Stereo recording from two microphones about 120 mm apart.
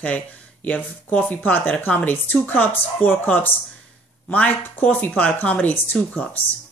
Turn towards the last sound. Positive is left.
turn(degrees=15)  # may be behind; listen again after turning